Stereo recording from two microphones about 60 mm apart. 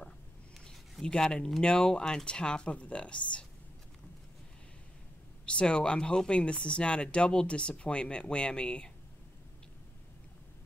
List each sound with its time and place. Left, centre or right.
0.6 s a sound: centre
1.6 s speech: centre
5.4 s speech: centre